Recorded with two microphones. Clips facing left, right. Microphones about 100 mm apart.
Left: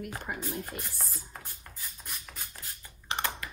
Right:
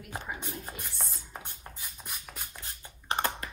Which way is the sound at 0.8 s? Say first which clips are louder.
Right 1 dB; centre (ahead or behind).